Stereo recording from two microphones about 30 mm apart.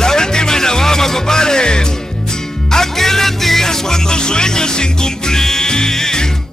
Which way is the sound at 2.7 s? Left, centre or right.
Centre.